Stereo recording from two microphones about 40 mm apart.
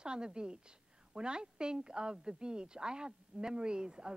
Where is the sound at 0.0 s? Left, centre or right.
Right.